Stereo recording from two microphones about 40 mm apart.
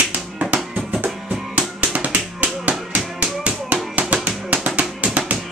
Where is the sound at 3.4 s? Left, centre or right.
Right.